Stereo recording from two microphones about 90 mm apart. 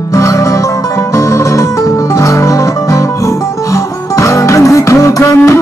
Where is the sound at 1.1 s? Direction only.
35° left (ahead or behind).